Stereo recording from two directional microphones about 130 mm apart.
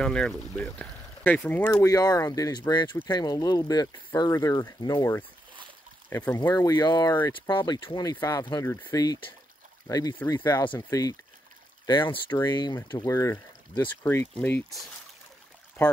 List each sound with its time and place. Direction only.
0.0 s speech: 5° left (ahead or behind)
6.5 s speech: 30° left (ahead or behind)
13.0 s speech: 25° left (ahead or behind)